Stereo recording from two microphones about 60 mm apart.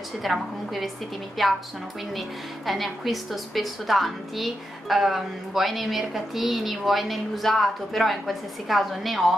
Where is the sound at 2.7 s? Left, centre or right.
Centre.